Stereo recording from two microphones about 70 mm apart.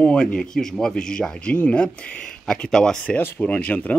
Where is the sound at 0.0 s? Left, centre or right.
Centre.